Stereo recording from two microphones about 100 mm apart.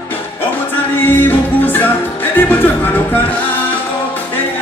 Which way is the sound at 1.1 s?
20° left (ahead or behind).